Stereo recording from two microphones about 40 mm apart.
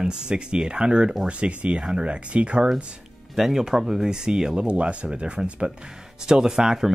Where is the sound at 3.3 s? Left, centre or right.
Centre.